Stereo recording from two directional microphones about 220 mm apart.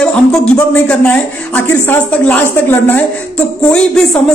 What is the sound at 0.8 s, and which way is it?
Speech, 5° left (ahead or behind).